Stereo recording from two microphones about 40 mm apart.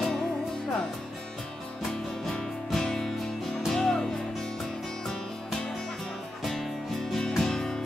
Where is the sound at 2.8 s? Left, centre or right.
Centre.